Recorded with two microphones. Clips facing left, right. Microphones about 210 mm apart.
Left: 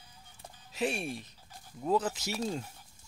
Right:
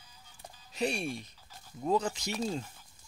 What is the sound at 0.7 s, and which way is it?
Speech, 5° left (ahead or behind).